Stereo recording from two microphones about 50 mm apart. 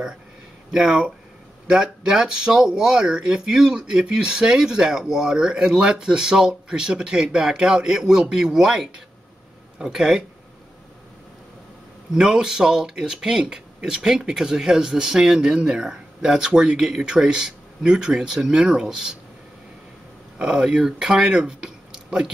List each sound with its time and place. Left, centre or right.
0.7 s speech: centre
12.1 s speech: centre
20.3 s speech: right